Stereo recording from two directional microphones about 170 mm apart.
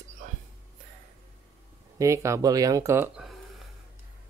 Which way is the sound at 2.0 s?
15° right (ahead or behind).